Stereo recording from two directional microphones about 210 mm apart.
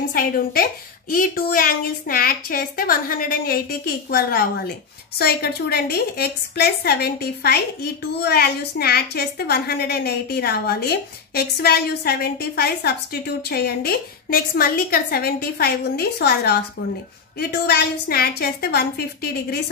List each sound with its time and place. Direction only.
0.1 s a woman's voice: 45° left (ahead or behind)